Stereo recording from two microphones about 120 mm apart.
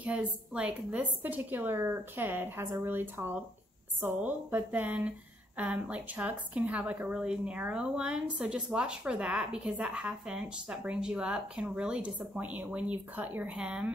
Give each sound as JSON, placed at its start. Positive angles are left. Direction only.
{"t": 0.0, "sound": "a woman's voice", "side_deg": -10}